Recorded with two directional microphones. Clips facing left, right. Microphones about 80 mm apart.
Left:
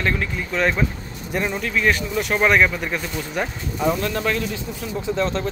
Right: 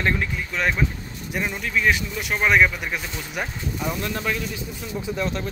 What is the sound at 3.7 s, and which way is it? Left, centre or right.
Speech, centre.